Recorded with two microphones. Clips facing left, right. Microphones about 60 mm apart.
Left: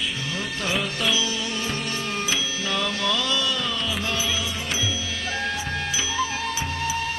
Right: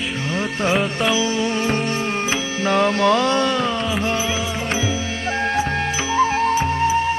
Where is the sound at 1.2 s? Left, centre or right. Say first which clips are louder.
Right 7 dB; right.